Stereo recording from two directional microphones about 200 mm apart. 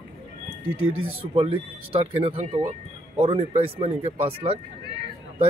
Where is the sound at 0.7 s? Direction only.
90° right.